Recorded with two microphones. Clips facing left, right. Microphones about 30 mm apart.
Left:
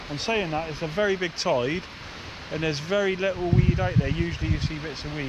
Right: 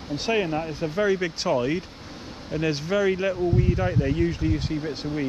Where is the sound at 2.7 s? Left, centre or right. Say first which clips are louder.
Right 1 dB; centre.